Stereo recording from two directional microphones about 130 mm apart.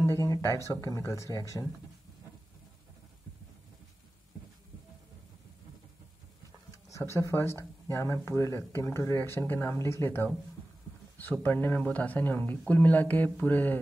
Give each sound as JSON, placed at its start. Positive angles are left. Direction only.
{"t": 0.0, "sound": "speech", "side_deg": 25}
{"t": 7.2, "sound": "speech", "side_deg": 20}
{"t": 11.4, "sound": "speech", "side_deg": 15}